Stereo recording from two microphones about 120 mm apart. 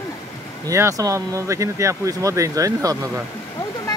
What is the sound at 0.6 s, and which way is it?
Speech, 25° right (ahead or behind).